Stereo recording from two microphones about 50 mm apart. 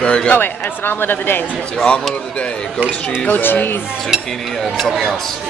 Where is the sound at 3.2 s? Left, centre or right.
Left.